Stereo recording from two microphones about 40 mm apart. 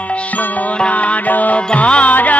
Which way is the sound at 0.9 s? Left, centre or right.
Left.